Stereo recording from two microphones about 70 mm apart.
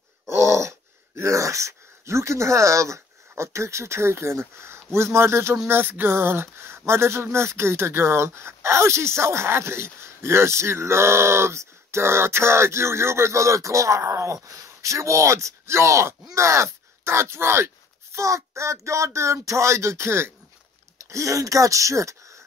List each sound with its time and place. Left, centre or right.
0.3 s speech: right
21.1 s speech: right